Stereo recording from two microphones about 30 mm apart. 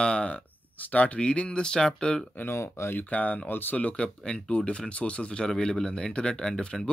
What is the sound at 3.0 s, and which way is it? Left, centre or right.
Speech, left.